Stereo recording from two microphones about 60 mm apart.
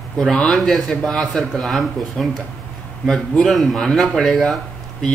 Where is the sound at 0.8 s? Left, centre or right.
Centre.